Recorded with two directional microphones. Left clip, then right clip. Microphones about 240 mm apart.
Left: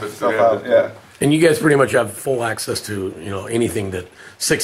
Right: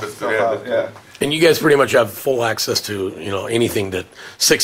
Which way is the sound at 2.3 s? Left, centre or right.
Left.